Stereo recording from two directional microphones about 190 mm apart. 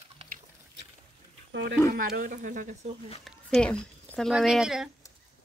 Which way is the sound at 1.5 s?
60° right (ahead or behind).